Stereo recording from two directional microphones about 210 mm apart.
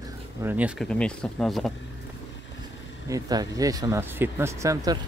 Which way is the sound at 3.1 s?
15° right (ahead or behind).